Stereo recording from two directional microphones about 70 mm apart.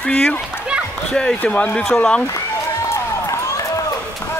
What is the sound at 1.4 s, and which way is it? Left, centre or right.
Speech, left.